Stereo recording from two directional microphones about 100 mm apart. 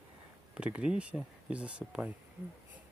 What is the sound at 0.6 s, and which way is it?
Speech, 10° right (ahead or behind).